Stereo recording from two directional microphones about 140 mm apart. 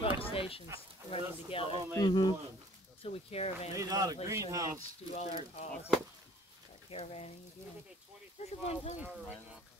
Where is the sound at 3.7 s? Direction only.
25° right (ahead or behind).